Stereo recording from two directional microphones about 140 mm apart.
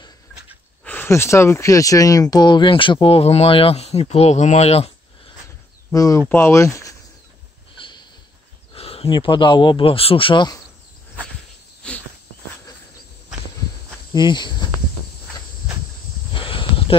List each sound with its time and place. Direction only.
0.8 s speech: 15° left (ahead or behind); by 4.9 s 45° left (ahead or behind)
5.9 s speech: 25° left (ahead or behind)
8.7 s speech: 45° left (ahead or behind)
11.8 s cricket: 5° left (ahead or behind)
14.1 s speech: 30° left (ahead or behind)
16.3 s snake: 35° left (ahead or behind)